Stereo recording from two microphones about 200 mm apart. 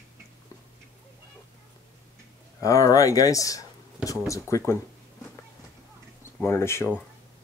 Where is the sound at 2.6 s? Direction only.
15° left (ahead or behind).